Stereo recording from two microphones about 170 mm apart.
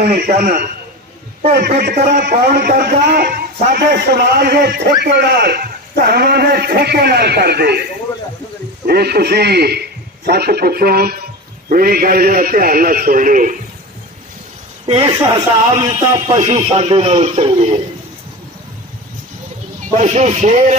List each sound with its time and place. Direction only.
0.0 s a man's voice: 65° right (ahead or behind)
1.8 s speech: 65° right (ahead or behind)
8.8 s a man's voice: 65° right (ahead or behind)
14.9 s a man's voice: 35° right (ahead or behind)
19.9 s a man's voice: 40° right (ahead or behind)